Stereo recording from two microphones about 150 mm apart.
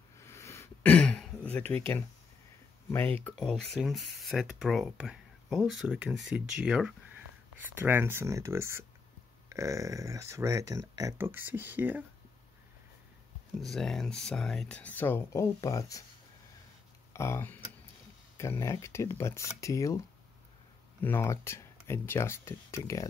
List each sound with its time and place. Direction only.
0.2 s throat clearing: 20° left (ahead or behind)
2.9 s speech: 15° left (ahead or behind)
3.3 s speech: 5° left (ahead or behind); by 12.0 s 10° right (ahead or behind)
13.6 s speech: centre (ahead or behind); by 16.0 s 20° left (ahead or behind)
17.1 s speech: 15° left (ahead or behind)
21.0 s speech: 15° left (ahead or behind)